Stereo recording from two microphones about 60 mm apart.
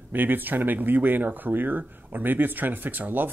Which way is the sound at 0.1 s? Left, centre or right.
Right.